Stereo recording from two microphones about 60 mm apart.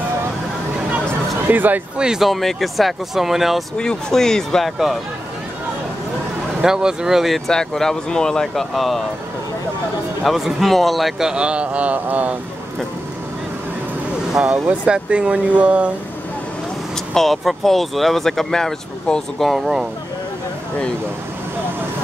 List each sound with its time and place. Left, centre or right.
1.5 s speech: right
2.0 s a man's voice: centre
2.2 s speech: centre
3.7 s speech: centre
6.6 s speech: centre
10.2 s a man's voice: centre; by 12.4 s right
14.4 s speech: right
17.1 s speech: centre
19.4 s speech: centre